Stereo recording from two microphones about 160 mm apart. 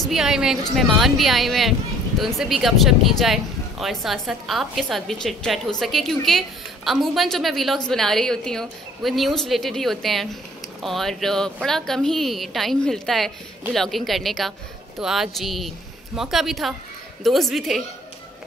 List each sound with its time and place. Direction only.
0.0 s speech: 5° right (ahead or behind)